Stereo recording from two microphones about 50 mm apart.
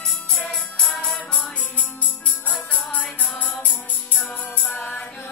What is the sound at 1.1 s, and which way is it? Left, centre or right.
Music, left.